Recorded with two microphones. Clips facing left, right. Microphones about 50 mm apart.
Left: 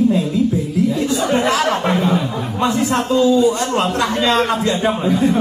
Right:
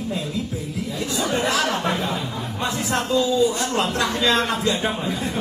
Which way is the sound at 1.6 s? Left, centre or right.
Left.